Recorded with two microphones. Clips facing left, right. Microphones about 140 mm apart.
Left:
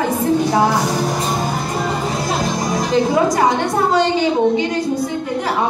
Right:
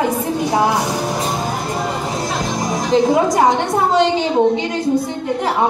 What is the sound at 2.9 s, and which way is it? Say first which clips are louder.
A woman's voice: right 2 dB; 20° right (ahead or behind).